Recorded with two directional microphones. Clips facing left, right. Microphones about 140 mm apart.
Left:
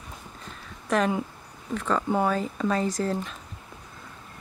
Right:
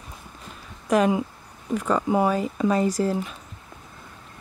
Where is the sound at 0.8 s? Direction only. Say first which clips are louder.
Right 4 dB; 10° right (ahead or behind).